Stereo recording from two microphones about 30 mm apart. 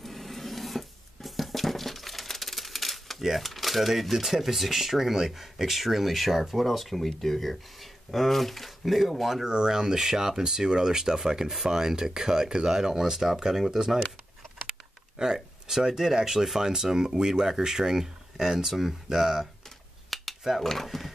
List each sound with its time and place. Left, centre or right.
0.0 s wood: centre
3.3 s speech: centre
9.4 s speech: right
15.1 s speech: right
20.1 s a sound: centre
20.6 s speech: centre